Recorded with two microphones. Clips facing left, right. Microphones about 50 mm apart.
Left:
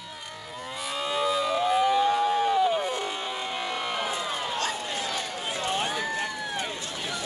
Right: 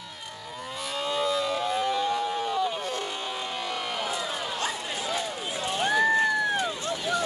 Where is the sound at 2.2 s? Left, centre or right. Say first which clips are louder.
Left 5 dB; left.